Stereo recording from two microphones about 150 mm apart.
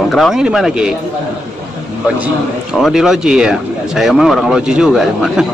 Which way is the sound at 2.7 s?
Centre (ahead or behind).